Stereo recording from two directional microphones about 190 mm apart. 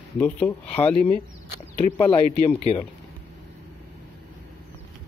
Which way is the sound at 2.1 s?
30° left (ahead or behind).